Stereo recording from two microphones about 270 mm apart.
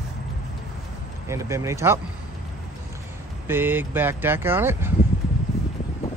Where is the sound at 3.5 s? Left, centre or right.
Centre.